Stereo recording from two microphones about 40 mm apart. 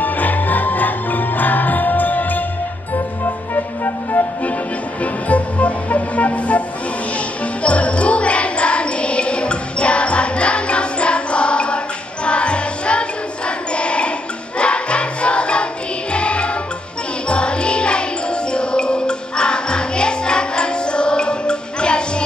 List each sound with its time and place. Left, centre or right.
0.0 s jingle bell: left
3.5 s music: left
5.0 s music: left
7.6 s music: left
13.7 s a sound: left
14.6 s music: left